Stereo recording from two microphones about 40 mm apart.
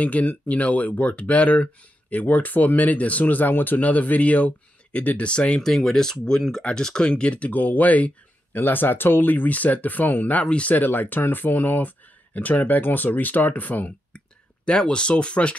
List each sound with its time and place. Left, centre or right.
0.0 s speech: left
5.6 s speech: centre; by 7.5 s left
7.5 s speech: left
8.5 s speech: left
10.4 s speech: left
10.7 s speech: left
14.1 s speech: left